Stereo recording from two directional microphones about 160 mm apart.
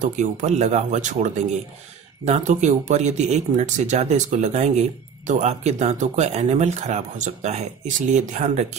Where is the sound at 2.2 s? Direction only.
45° right (ahead or behind).